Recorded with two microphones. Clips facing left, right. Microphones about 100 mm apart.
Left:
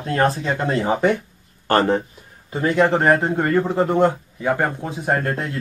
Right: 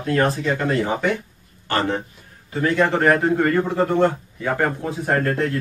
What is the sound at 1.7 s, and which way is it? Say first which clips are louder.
Speech: left 5 dB; 40° left (ahead or behind).